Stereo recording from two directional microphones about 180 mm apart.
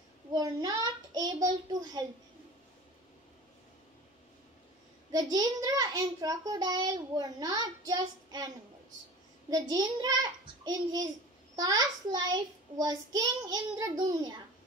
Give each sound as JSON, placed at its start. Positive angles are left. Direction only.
{"t": 0.3, "sound": "a child's voice", "side_deg": -20}
{"t": 5.1, "sound": "a child's voice", "side_deg": -20}
{"t": 9.5, "sound": "a child's voice", "side_deg": -20}